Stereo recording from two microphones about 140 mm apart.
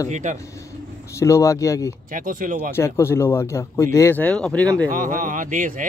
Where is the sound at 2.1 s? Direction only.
70° right (ahead or behind).